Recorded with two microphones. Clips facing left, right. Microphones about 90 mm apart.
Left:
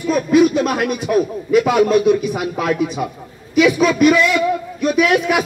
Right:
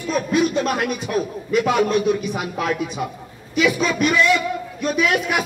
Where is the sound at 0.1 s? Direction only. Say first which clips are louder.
Left 6 dB; centre (ahead or behind).